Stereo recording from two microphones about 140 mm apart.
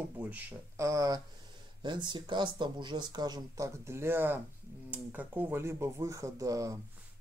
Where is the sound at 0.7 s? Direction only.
20° right (ahead or behind).